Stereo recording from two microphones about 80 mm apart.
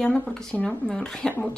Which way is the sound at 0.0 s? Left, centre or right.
Centre.